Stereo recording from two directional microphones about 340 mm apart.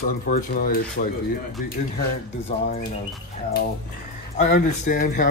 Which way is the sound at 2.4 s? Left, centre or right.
Centre.